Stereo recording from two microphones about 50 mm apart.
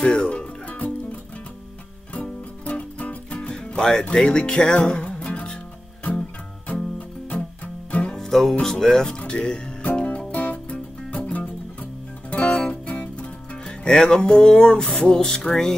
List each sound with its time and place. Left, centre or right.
0.0 s music: centre
2.1 s music: left
4.1 s speech: centre
6.7 s music: left
8.0 s music: centre
8.3 s music: centre
8.6 s speech: centre
9.9 s music: left
15.2 s speech: centre